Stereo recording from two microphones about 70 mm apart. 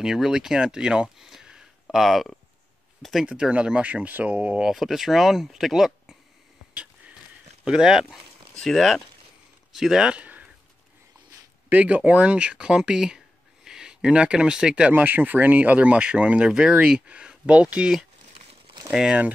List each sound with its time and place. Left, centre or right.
0.0 s speech: centre
3.3 s speech: centre
4.6 s speech: centre
7.6 s speech: centre
8.5 s speech: centre
10.1 s a sound: right
11.7 s speech: right
14.9 s speech: right; by 19.1 s centre